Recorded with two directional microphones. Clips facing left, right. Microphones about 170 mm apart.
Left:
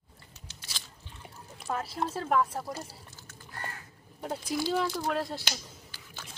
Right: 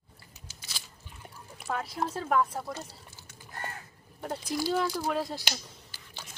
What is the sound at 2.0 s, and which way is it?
Speech, centre (ahead or behind).